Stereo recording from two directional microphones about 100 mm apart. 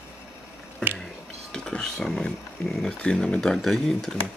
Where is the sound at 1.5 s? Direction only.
10° left (ahead or behind).